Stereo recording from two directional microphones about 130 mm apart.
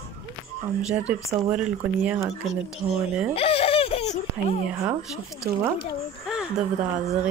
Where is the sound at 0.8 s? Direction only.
10° right (ahead or behind).